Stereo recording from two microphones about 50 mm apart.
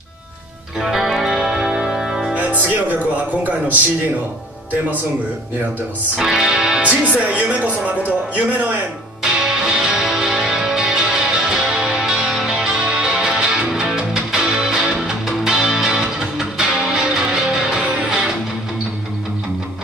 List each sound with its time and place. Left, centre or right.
0.7 s music: centre
1.6 s music: right
1.9 s music: centre
2.3 s speech: right
6.1 s speech: centre
6.8 s speech: right
9.2 s music: centre
12.8 s music: centre